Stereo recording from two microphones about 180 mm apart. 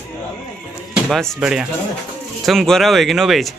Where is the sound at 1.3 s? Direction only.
5° right (ahead or behind).